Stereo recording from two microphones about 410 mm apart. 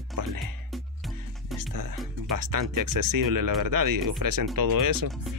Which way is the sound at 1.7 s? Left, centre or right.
Right.